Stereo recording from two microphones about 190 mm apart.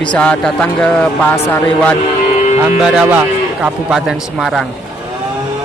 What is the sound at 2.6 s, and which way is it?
Speech, 5° right (ahead or behind).